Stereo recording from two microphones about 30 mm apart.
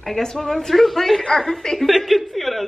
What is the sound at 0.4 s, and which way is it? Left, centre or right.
Speech, centre.